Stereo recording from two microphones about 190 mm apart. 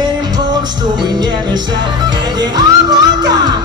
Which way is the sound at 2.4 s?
20° right (ahead or behind).